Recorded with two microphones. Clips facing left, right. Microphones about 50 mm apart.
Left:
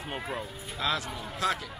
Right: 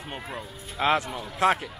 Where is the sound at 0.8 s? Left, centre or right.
Right.